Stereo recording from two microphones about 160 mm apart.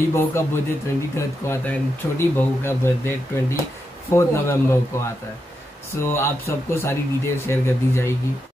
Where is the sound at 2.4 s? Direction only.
15° left (ahead or behind).